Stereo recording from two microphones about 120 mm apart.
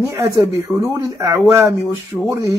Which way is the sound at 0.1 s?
25° right (ahead or behind).